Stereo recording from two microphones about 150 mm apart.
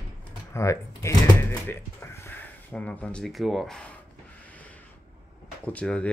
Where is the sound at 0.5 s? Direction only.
20° left (ahead or behind); by 3.9 s 5° left (ahead or behind).